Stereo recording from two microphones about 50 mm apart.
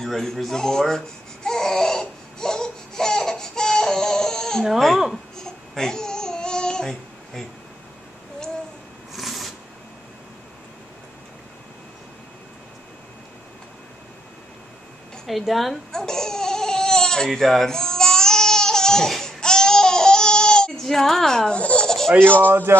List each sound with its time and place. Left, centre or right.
0.0 s baby cry: centre
4.6 s a woman's voice: centre
5.4 s babbling: centre
9.1 s a sound: centre
15.2 s a woman's voice: centre
15.9 s babbling: centre
20.8 s a woman's voice: centre
21.5 s baby laughter: left
21.8 s a sound: centre
22.5 s speech: right